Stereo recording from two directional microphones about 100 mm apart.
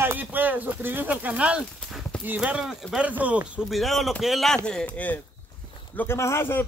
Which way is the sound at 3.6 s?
Centre (ahead or behind).